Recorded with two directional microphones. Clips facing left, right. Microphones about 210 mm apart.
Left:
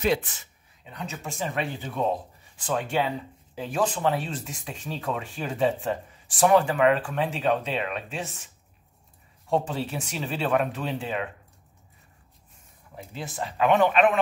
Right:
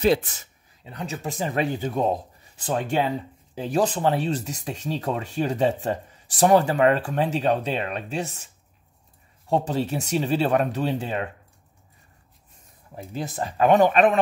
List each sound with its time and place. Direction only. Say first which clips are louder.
0.0 s speech: right 4 dB; 35° right (ahead or behind)
9.5 s speech: right 3 dB; 40° right (ahead or behind)
12.9 s speech: right 5 dB; 40° right (ahead or behind)